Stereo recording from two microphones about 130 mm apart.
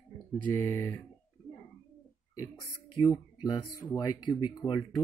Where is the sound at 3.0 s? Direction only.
30° left (ahead or behind).